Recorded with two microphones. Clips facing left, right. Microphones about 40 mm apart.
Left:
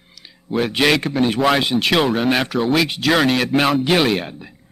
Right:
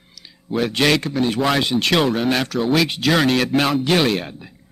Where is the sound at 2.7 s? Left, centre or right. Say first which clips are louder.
Even; centre.